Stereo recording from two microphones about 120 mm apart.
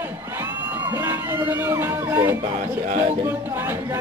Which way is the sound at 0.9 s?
20° right (ahead or behind).